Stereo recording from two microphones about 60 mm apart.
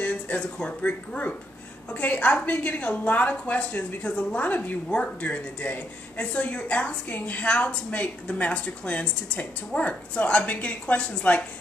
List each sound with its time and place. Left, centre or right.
0.0 s speech: left